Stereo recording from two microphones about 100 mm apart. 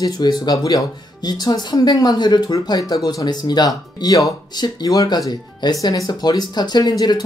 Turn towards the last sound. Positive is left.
turn(degrees=45)  # may be behind; listen again after turning